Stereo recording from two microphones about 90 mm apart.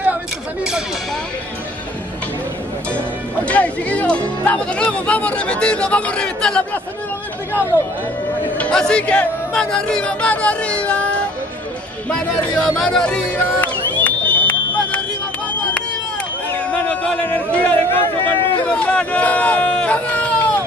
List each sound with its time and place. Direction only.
3.4 s music: 15° left (ahead or behind)
4.5 s speech: 15° left (ahead or behind)
8.5 s speech: 10° left (ahead or behind)
14.0 s a sound: 20° left (ahead or behind)
16.5 s a sound: 15° left (ahead or behind)
18.7 s speech: 10° left (ahead or behind)